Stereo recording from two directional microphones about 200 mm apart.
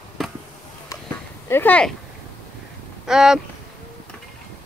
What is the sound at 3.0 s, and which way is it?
Speech, centre (ahead or behind).